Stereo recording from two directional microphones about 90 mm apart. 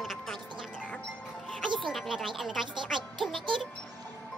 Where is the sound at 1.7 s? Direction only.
Centre (ahead or behind).